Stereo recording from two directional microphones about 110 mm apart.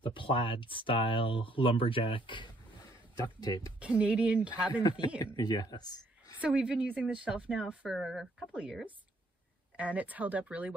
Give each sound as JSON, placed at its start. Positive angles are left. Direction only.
{"t": 0.0, "sound": "speech", "side_deg": 50}
{"t": 3.2, "sound": "speech", "side_deg": 40}
{"t": 3.8, "sound": "speech", "side_deg": -10}
{"t": 5.2, "sound": "speech", "side_deg": 40}
{"t": 6.4, "sound": "speech", "side_deg": -5}